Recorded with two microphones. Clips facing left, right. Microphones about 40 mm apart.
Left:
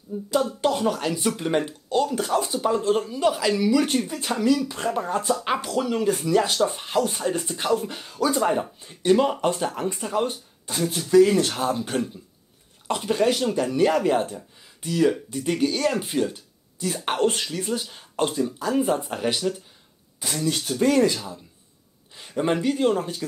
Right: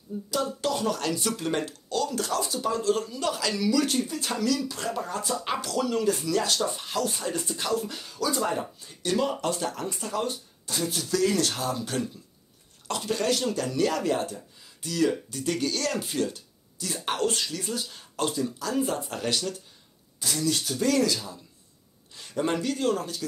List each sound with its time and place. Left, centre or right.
0.1 s speech: centre; by 5.3 s left
5.4 s speech: left